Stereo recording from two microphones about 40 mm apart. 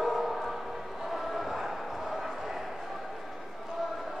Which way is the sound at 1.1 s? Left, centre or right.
Centre.